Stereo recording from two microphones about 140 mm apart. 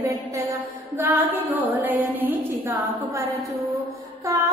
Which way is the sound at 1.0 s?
15° right (ahead or behind).